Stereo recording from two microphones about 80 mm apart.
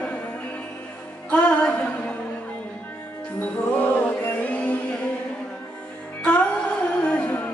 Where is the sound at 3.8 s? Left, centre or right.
Centre.